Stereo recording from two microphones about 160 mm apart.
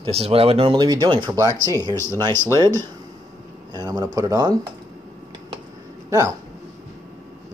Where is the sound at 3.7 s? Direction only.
25° right (ahead or behind).